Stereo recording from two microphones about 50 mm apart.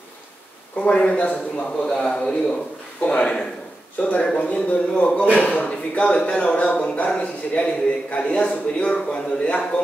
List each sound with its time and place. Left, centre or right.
0.7 s a man's voice: left
1.9 s a man's voice: centre
4.0 s a man's voice: left